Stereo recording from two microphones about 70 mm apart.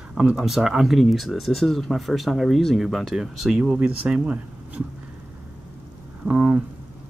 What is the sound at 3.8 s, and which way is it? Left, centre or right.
Speech, centre.